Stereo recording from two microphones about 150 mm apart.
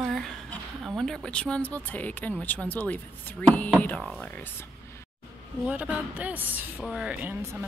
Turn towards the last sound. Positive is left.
turn(degrees=-10)  # may be behind; listen again after turning